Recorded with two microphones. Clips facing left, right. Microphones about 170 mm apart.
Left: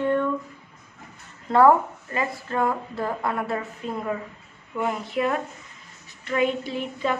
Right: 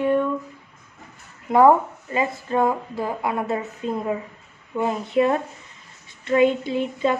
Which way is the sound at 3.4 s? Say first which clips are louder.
Right 3 dB; 20° right (ahead or behind).